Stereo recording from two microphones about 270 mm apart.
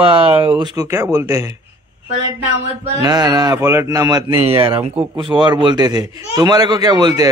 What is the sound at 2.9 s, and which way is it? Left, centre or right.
Speech, centre.